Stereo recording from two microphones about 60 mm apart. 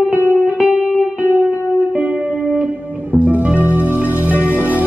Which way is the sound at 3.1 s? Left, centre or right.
Centre.